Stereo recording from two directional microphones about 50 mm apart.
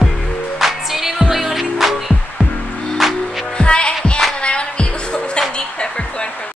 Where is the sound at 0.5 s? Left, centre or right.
Centre.